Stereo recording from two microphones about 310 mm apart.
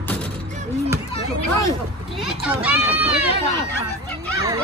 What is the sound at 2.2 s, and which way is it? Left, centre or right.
Speech, centre.